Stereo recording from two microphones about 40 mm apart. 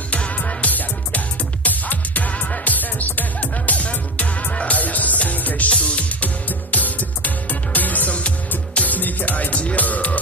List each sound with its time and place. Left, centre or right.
0.1 s music: left
5.7 s music: left